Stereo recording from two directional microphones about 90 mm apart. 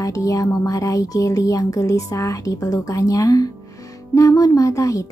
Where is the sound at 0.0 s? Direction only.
40° left (ahead or behind).